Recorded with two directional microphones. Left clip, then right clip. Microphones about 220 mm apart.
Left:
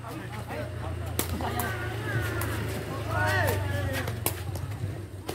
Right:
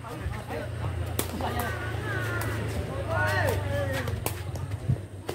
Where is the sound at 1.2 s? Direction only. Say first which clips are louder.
Even; 15° right (ahead or behind).